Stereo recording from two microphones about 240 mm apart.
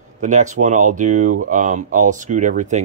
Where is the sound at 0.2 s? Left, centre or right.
Right.